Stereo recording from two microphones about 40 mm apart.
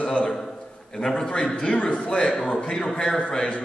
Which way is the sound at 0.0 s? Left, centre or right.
Left.